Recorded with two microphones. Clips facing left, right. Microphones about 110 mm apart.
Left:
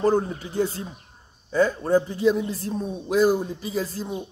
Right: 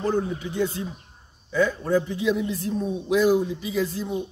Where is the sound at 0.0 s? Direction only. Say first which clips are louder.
Left 3 dB; 40° left (ahead or behind).